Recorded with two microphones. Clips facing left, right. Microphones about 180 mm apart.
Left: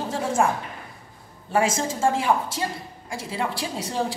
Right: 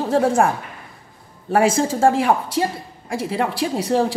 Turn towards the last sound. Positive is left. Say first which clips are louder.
# right 8 dB
turn(degrees=-65)  # may be behind; listen again after turning